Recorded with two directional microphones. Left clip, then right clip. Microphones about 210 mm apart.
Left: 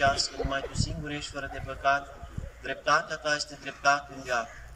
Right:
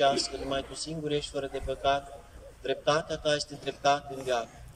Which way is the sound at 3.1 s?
55° right (ahead or behind).